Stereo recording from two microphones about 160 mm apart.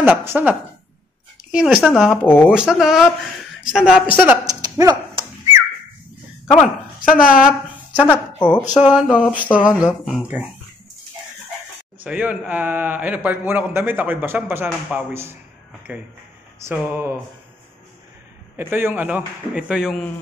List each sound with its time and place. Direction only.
0.0 s a man's voice: 15° right (ahead or behind)
2.2 s speech: 10° left (ahead or behind)
2.5 s a man's voice: 5° right (ahead or behind)
4.6 s dog: 25° right (ahead or behind)
6.5 s a woman's voice: 5° left (ahead or behind)
7.2 s speech: 60° left (ahead or behind)
8.0 s speech: 10° left (ahead or behind)
8.7 s a man's voice: 5° right (ahead or behind)
12.0 s a man's voice: 10° right (ahead or behind)
18.6 s a man's voice: 15° right (ahead or behind)